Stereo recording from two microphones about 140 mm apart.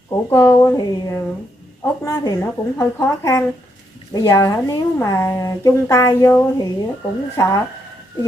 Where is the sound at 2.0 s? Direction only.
25° left (ahead or behind).